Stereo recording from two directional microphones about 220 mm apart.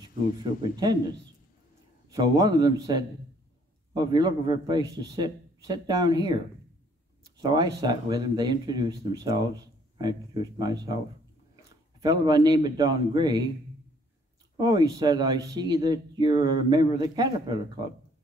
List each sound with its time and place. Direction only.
0.0 s speech: 20° right (ahead or behind)
2.0 s speech: 15° right (ahead or behind)
7.2 s a sound: 20° right (ahead or behind)
7.8 s speech: 20° right (ahead or behind)
12.0 s speech: 20° right (ahead or behind)
14.6 s speech: 20° right (ahead or behind)